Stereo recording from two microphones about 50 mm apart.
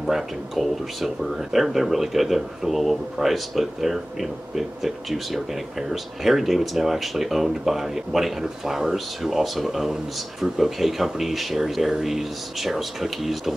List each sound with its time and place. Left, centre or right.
0.0 s speech: centre